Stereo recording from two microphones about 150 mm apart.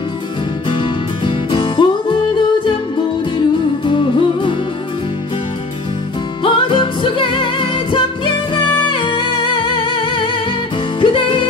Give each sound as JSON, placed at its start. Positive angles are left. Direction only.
{"t": 0.7, "sound": "music", "side_deg": 30}
{"t": 3.3, "sound": "music", "side_deg": 35}
{"t": 6.4, "sound": "music", "side_deg": 35}